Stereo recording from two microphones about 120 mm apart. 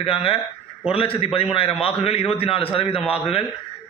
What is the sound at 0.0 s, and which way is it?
A man's voice, 55° left (ahead or behind).